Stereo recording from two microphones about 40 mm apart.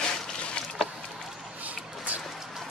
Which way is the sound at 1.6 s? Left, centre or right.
Right.